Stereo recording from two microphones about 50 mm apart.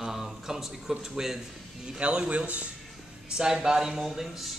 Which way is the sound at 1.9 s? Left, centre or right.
Right.